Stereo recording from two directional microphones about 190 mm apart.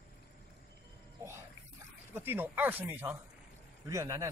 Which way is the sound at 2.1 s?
10° right (ahead or behind).